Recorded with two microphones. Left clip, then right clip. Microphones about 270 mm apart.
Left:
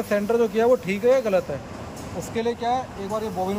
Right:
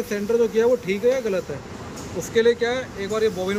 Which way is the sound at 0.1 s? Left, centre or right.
Centre.